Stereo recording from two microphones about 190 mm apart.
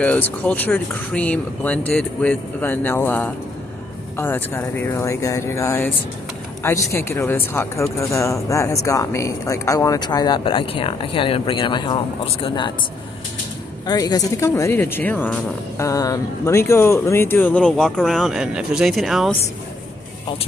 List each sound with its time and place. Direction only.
0.0 s speech: 5° left (ahead or behind)
6.9 s speech: 15° left (ahead or behind)
13.8 s speech: 20° left (ahead or behind); by 19.3 s centre (ahead or behind)